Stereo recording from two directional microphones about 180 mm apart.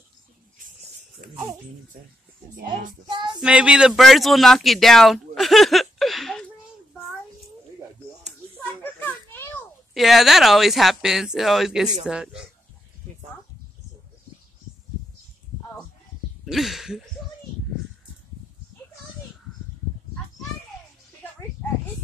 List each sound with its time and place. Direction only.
3.1 s child singing: 25° right (ahead or behind)
3.3 s speech: 5° right (ahead or behind)
8.8 s children playing: 10° left (ahead or behind)
9.9 s speech: centre (ahead or behind)
16.4 s speech: centre (ahead or behind)